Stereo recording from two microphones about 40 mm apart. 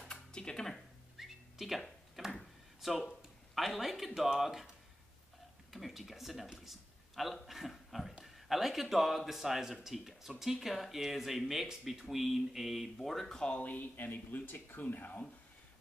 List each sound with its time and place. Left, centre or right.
0.0 s music: left
1.1 s music: centre
2.2 s a sound: centre
2.8 s speech: centre
5.7 s speech: centre
6.5 s a sound: centre
7.4 s a man's voice: centre
12.9 s speech: centre
13.6 s speech: left
13.9 s speech: left